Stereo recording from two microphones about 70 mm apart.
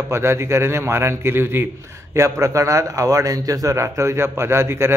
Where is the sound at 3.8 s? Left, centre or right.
Right.